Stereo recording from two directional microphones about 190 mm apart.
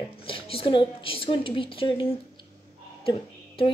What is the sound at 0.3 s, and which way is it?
A woman's voice, 30° left (ahead or behind).